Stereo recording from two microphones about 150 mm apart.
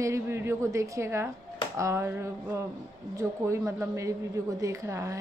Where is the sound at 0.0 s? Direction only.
20° right (ahead or behind).